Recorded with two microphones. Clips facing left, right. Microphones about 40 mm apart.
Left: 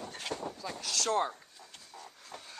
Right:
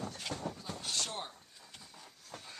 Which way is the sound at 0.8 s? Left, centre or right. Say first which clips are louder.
Left 10 dB; left.